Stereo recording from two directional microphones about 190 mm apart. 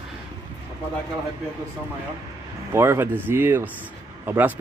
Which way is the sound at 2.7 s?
15° right (ahead or behind).